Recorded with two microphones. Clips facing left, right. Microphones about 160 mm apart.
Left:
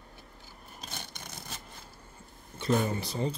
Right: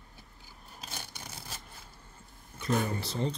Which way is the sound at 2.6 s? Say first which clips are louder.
Left 3 dB; 25° left (ahead or behind).